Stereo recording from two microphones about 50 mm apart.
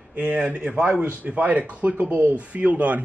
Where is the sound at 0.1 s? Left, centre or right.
Right.